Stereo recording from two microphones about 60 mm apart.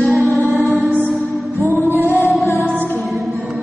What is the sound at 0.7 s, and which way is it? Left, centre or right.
Music, right.